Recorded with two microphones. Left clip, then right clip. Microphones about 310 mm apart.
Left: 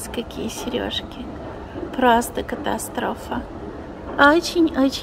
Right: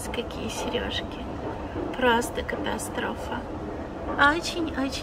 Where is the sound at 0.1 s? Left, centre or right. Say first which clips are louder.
Left 3 dB; left.